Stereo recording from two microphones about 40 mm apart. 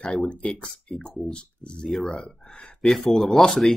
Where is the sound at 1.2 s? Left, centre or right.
Left.